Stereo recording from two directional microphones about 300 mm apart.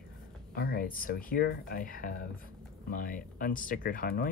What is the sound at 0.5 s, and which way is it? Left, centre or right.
Speech, left.